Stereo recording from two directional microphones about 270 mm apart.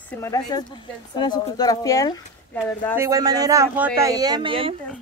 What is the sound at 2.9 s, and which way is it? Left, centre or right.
Speech, centre.